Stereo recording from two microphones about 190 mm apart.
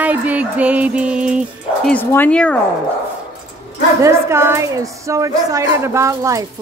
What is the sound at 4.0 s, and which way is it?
A woman's voice, 15° right (ahead or behind).